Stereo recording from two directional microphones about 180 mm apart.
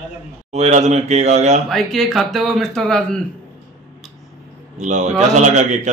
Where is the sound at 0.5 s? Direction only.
40° right (ahead or behind).